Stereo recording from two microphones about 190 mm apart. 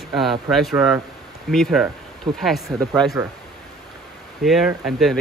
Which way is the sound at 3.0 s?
20° right (ahead or behind).